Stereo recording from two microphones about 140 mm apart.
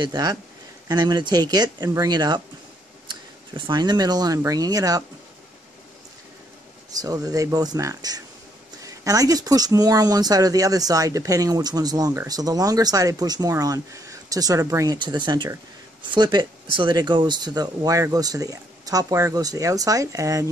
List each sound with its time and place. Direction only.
0.0 s speech: 30° right (ahead or behind)
7.0 s speech: 25° right (ahead or behind)